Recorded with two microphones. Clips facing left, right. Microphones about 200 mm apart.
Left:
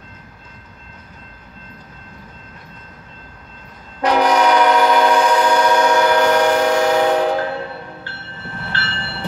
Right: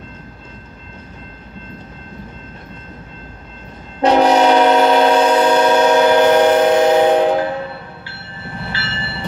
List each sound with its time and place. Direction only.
4.0 s train: 25° right (ahead or behind)
8.7 s train: 5° right (ahead or behind)